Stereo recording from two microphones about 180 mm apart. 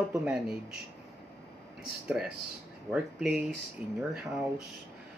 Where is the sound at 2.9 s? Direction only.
10° right (ahead or behind).